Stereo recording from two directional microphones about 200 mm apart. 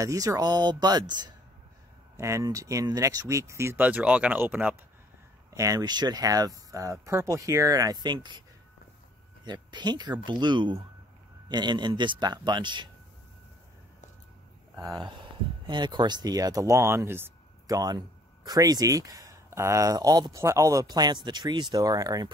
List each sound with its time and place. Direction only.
0.0 s a man's voice: 15° right (ahead or behind)
9.5 s a man's voice: 20° right (ahead or behind)
15.6 s speech: 20° right (ahead or behind)